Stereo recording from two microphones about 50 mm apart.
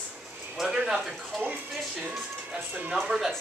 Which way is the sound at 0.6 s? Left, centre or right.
Right.